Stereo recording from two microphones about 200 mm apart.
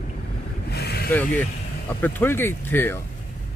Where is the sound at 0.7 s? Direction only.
50° left (ahead or behind).